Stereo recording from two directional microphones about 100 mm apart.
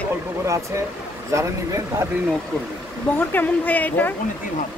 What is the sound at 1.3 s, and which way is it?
Speech, 30° right (ahead or behind).